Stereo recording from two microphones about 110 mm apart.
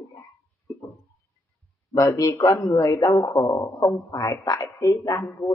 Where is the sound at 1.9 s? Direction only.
35° left (ahead or behind).